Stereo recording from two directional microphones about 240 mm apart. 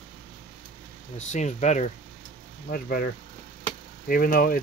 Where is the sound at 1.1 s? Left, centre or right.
Left.